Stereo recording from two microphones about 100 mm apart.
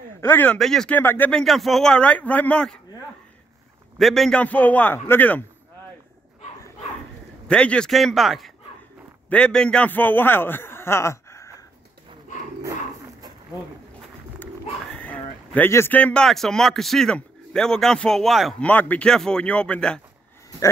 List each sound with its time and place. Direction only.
0.2 s speech: 20° left (ahead or behind)
0.6 s a man's voice: 5° left (ahead or behind)
0.9 s speech: 20° left (ahead or behind)
1.3 s a man's voice: centre (ahead or behind)
4.0 s a man's voice: centre (ahead or behind)
4.4 s a man's voice: 15° left (ahead or behind)
7.4 s a man's voice: 10° left (ahead or behind); by 11.5 s 30° left (ahead or behind)
15.0 s a sound: 15° left (ahead or behind)
15.7 s speech: 25° left (ahead or behind)
16.0 s a man's voice: 10° left (ahead or behind)
18.6 s a man's voice: 15° left (ahead or behind)